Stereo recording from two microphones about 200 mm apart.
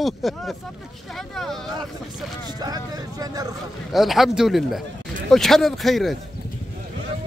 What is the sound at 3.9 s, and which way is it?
Speech, centre (ahead or behind).